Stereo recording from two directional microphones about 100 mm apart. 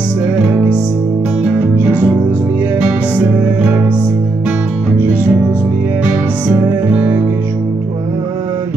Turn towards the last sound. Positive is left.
turn(degrees=-15)  # may be behind; listen again after turning